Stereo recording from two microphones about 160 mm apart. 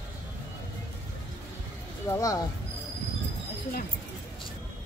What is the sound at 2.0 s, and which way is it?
Speech, 20° left (ahead or behind).